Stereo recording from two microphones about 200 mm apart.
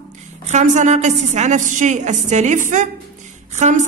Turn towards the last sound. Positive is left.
turn(degrees=-35)  # may be behind; listen again after turning